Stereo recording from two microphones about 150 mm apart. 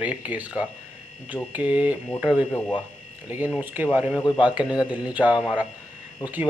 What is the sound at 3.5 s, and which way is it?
Speech, 10° right (ahead or behind).